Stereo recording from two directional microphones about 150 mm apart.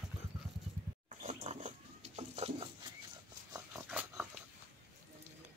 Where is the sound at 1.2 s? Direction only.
50° right (ahead or behind).